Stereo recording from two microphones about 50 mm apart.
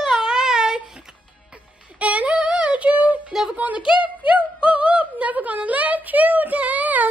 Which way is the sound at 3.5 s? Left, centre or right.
Right.